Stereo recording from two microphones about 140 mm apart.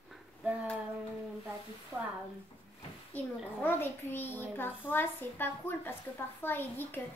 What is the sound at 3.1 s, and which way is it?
A child's voice, 15° left (ahead or behind).